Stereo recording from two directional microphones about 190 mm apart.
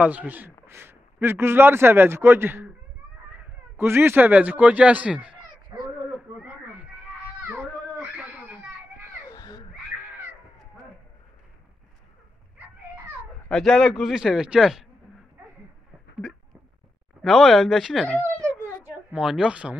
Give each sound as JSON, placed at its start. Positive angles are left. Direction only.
{"t": 0.0, "sound": "a man's voice", "side_deg": -10}
{"t": 5.7, "sound": "a sound", "side_deg": -10}
{"t": 7.4, "sound": "children playing", "side_deg": -10}
{"t": 9.3, "sound": "caw", "side_deg": 20}
{"t": 13.5, "sound": "a man's voice", "side_deg": 0}
{"t": 17.2, "sound": "a man's voice", "side_deg": 0}